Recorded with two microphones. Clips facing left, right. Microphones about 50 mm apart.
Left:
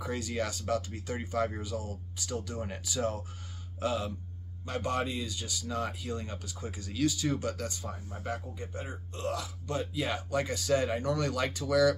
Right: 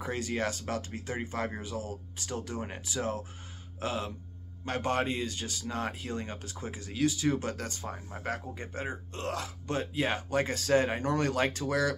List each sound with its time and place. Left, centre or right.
0.0 s speech: right
4.6 s speech: right
7.3 s speech: right